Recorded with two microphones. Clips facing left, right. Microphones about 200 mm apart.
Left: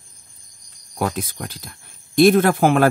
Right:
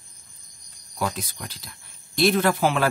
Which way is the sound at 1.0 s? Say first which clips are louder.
Left 5 dB; 55° left (ahead or behind).